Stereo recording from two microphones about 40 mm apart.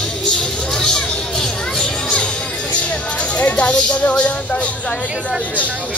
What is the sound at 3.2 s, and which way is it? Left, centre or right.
Speech, left.